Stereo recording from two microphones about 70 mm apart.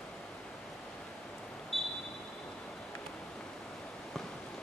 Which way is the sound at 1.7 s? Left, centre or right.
Centre.